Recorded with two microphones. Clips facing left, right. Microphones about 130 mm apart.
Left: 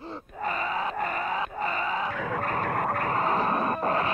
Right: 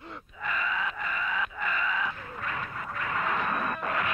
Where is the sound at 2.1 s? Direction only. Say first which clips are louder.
Left 12 dB; 90° left.